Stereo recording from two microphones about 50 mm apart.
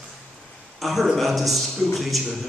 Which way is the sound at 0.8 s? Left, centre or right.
Centre.